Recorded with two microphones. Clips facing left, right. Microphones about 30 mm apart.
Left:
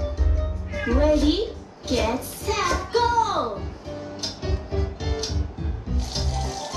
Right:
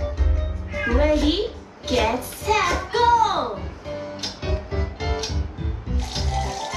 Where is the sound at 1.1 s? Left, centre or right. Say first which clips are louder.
Even; right.